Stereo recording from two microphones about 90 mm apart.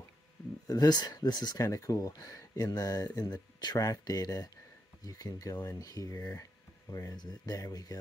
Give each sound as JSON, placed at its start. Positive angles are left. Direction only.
{"t": 0.7, "sound": "speech", "side_deg": 45}
{"t": 1.6, "sound": "speech", "side_deg": 35}